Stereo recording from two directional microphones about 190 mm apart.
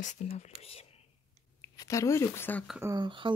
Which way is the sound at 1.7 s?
15° left (ahead or behind).